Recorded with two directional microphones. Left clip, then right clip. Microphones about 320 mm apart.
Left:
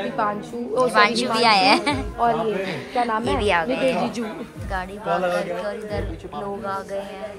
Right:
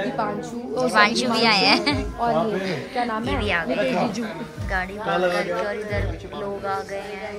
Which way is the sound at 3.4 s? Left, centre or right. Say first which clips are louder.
Left 2 dB; centre.